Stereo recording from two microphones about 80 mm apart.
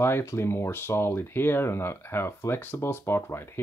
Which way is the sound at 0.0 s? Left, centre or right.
Left.